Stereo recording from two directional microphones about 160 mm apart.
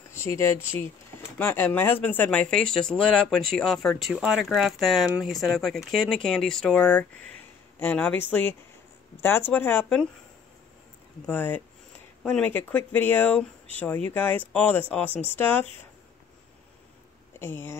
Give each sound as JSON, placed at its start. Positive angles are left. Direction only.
{"t": 0.1, "sound": "speech", "side_deg": 15}
{"t": 11.2, "sound": "speech", "side_deg": 10}
{"t": 17.4, "sound": "speech", "side_deg": 15}